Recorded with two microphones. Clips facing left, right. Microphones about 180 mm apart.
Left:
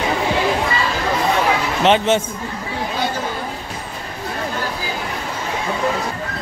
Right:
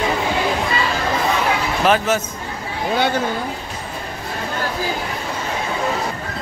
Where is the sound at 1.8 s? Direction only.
25° left (ahead or behind).